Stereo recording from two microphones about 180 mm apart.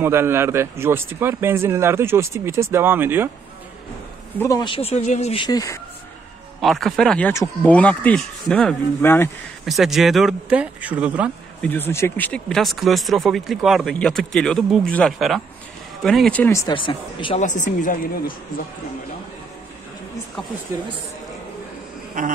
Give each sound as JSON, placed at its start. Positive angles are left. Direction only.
{"t": 0.0, "sound": "speech", "side_deg": -15}
{"t": 4.4, "sound": "speech", "side_deg": 20}
{"t": 6.6, "sound": "speech", "side_deg": 0}
{"t": 9.7, "sound": "speech", "side_deg": 0}
{"t": 11.6, "sound": "speech", "side_deg": 10}
{"t": 16.7, "sound": "speech", "side_deg": 30}
{"t": 17.4, "sound": "speech", "side_deg": 45}